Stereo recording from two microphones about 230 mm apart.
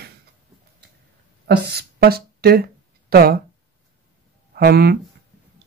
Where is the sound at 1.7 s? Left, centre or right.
Right.